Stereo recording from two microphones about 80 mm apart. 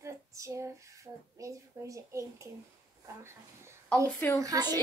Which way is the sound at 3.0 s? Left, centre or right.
Right.